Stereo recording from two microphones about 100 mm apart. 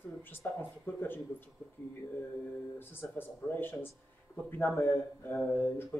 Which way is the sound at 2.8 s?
20° left (ahead or behind).